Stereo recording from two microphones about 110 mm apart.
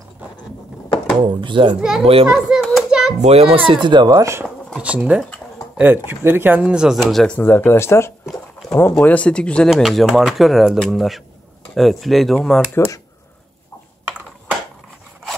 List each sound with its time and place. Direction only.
1.4 s speech: 50° right (ahead or behind)
1.8 s speech: 5° right (ahead or behind)
2.2 s hands: 5° right (ahead or behind)
3.2 s speech: 65° right (ahead or behind); by 4.2 s 45° right (ahead or behind)
4.2 s speech: 25° right (ahead or behind)
4.7 s speech: 10° right (ahead or behind)
7.3 s speech: 20° left (ahead or behind)
8.3 s a sound: centre (ahead or behind)
8.7 s speech: 20° left (ahead or behind); by 12.6 s 5° left (ahead or behind)
12.7 s speech: 25° left (ahead or behind)